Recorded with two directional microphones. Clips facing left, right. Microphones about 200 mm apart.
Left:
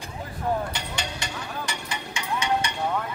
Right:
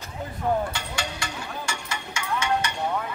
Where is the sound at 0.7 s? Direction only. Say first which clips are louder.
Right 1 dB; 20° left (ahead or behind).